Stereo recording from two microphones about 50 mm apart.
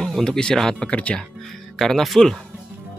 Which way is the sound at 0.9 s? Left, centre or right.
Left.